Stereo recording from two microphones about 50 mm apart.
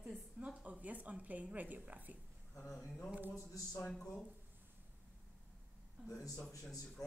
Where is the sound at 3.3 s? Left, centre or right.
Left.